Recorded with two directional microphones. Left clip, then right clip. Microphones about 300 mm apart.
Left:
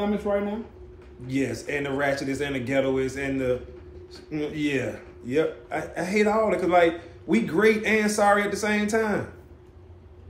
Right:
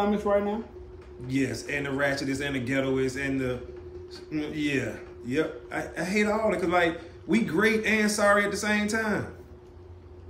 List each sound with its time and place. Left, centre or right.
0.0 s speech: centre
1.2 s speech: centre